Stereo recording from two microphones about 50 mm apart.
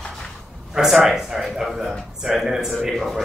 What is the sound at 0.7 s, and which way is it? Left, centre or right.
Speech, centre.